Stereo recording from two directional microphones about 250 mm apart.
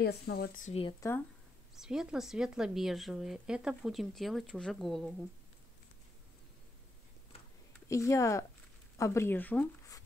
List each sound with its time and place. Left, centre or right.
0.0 s speech: left
1.8 s speech: centre
7.9 s speech: centre